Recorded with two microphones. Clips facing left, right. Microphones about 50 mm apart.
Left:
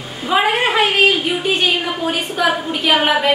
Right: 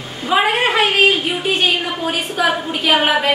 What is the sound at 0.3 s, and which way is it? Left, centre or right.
A woman's voice, centre.